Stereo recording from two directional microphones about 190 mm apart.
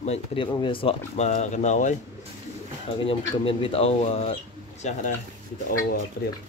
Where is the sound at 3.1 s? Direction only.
30° left (ahead or behind).